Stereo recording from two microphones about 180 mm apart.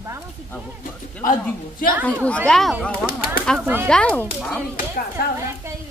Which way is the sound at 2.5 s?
Centre (ahead or behind).